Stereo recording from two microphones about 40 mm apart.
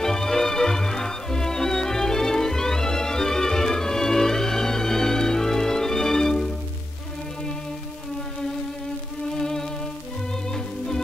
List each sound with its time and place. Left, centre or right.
0.0 s music: centre
9.3 s music: centre